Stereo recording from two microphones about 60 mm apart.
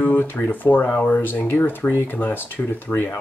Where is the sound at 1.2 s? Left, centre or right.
Left.